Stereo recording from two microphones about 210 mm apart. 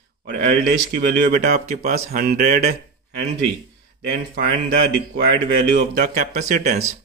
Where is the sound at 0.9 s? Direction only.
45° right (ahead or behind).